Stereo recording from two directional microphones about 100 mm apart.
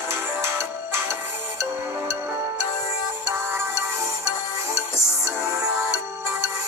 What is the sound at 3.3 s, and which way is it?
Music, 25° right (ahead or behind).